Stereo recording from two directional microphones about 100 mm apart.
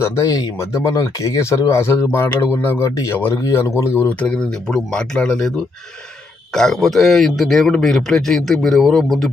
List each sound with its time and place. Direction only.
0.0 s speech: 30° left (ahead or behind); by 5.5 s 5° left (ahead or behind)
6.5 s a man's voice: 5° left (ahead or behind)